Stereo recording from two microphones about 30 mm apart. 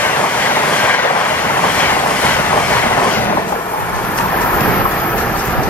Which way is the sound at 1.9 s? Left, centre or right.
Left.